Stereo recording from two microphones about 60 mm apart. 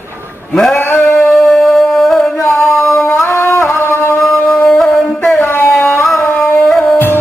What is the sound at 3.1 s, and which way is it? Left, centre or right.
Music, left.